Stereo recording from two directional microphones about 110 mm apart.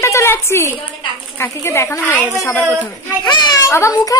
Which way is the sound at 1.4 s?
25° left (ahead or behind).